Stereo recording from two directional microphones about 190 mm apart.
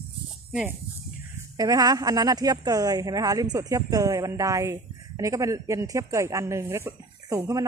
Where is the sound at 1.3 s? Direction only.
20° right (ahead or behind).